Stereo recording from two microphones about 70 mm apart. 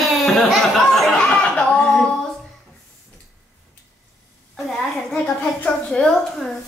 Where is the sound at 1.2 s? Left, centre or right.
Centre.